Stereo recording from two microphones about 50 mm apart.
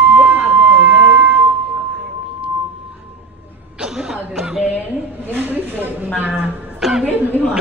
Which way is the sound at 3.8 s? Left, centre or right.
Centre.